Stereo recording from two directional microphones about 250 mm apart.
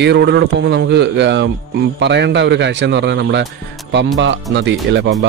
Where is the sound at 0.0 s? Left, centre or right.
Right.